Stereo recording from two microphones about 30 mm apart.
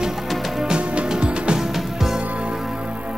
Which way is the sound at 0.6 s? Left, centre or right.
Right.